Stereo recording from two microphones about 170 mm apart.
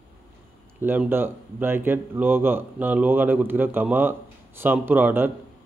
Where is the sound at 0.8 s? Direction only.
10° right (ahead or behind).